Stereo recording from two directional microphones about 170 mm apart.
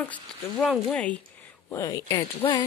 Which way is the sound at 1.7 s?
20° left (ahead or behind).